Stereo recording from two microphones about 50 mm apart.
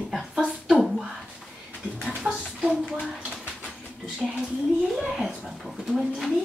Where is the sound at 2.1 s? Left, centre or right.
Centre.